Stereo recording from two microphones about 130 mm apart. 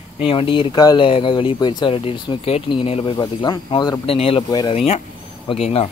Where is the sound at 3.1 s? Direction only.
30° left (ahead or behind).